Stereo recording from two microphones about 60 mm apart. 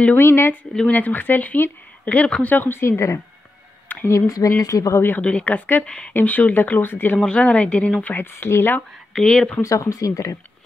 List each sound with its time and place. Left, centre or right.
0.1 s speech: left
0.9 s speech: left
2.5 s speech: left
2.8 s speech: left
4.1 s speech: left
5.2 s speech: left
7.2 s speech: centre
8.0 s speech: left
9.1 s speech: centre
9.6 s speech: left